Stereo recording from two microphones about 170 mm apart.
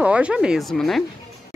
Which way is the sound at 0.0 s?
5° right (ahead or behind).